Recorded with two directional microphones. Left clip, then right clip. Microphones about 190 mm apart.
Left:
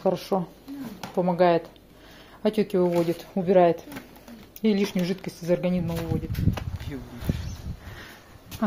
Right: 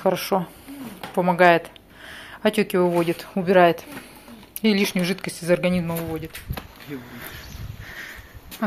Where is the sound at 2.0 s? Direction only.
10° left (ahead or behind).